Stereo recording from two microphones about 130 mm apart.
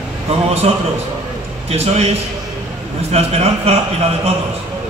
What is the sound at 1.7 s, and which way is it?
A man's voice, 55° right (ahead or behind).